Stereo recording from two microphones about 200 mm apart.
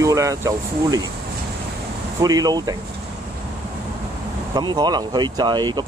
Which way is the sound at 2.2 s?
20° right (ahead or behind).